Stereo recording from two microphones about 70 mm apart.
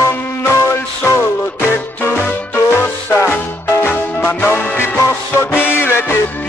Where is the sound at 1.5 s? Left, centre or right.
Left.